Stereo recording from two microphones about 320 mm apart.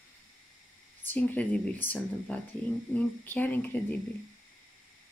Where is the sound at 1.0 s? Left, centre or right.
Centre.